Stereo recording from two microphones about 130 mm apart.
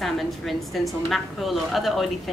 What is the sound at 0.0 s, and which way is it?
A woman's voice, centre (ahead or behind).